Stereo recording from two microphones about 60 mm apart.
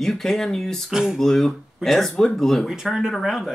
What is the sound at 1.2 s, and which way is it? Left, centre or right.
Speech, centre.